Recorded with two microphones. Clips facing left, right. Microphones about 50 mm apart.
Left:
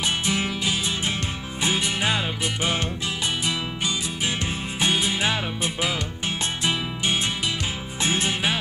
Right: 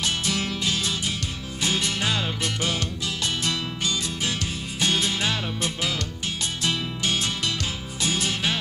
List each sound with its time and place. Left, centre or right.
0.0 s music: centre